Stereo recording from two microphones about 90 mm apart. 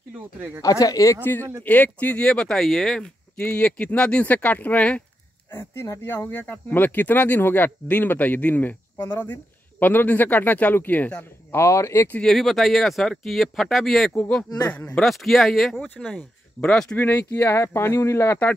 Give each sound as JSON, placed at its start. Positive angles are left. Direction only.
{"t": 0.6, "sound": "speech", "side_deg": 40}
{"t": 1.2, "sound": "speech", "side_deg": 20}
{"t": 5.5, "sound": "speech", "side_deg": 30}
{"t": 11.5, "sound": "speech", "side_deg": 30}
{"t": 12.2, "sound": "speech", "side_deg": 5}
{"t": 14.1, "sound": "speech", "side_deg": 15}
{"t": 15.0, "sound": "speech", "side_deg": 0}
{"t": 16.9, "sound": "speech", "side_deg": 20}
{"t": 17.2, "sound": "speech", "side_deg": 30}